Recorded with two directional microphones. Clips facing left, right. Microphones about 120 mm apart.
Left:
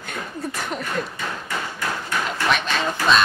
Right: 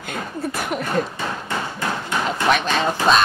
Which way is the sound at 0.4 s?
5° right (ahead or behind).